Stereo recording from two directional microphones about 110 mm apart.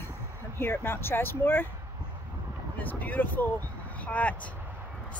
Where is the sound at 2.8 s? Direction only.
15° left (ahead or behind).